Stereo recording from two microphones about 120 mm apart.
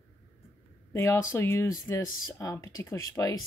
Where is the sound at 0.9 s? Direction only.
25° left (ahead or behind).